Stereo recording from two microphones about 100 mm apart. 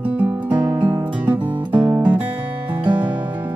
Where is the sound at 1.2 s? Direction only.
20° right (ahead or behind).